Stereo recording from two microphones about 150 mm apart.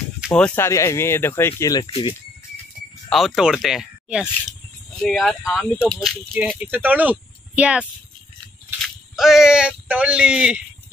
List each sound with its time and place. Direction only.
0.3 s speech: 10° left (ahead or behind)
0.7 s speech: 20° left (ahead or behind)
1.9 s speech: 35° left (ahead or behind)
3.1 s speech: centre (ahead or behind)
6.6 s speech: 10° right (ahead or behind)